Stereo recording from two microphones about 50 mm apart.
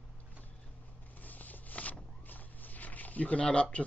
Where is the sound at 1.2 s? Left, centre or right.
Left.